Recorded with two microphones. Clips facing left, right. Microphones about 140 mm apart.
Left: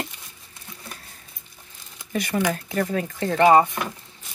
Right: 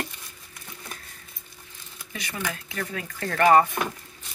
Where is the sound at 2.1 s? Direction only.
50° left (ahead or behind).